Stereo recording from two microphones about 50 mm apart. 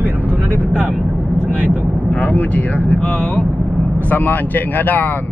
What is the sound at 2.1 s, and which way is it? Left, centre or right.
Speech, left.